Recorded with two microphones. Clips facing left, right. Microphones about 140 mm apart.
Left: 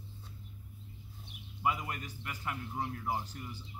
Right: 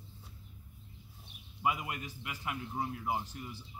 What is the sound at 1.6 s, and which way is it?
A man's voice, 10° right (ahead or behind).